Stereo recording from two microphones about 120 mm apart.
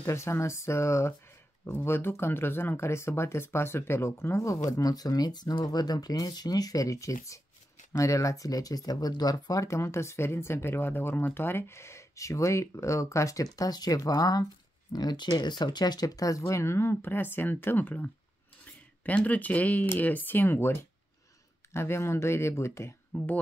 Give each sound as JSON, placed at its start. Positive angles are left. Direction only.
{"t": 0.0, "sound": "speech", "side_deg": 20}